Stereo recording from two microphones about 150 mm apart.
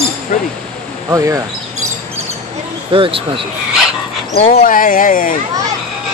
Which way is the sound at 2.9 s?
35° right (ahead or behind).